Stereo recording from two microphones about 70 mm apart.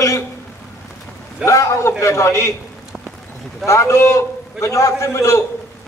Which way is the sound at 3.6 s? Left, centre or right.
Left.